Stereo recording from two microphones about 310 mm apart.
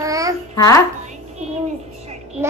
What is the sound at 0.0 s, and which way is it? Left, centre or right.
Babbling, centre.